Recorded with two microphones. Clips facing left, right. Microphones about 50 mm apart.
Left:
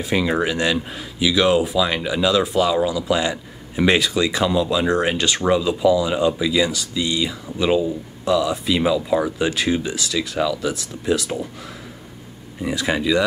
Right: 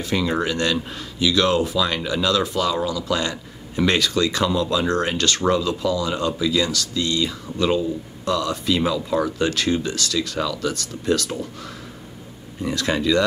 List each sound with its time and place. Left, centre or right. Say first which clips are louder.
0.0 s speech: left 2 dB; centre
12.6 s speech: left 1 dB; centre